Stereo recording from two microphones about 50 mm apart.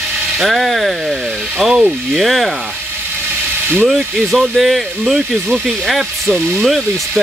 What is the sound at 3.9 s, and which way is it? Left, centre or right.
Speech, centre.